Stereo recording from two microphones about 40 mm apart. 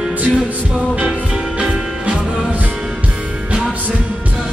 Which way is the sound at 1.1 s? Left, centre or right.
Right.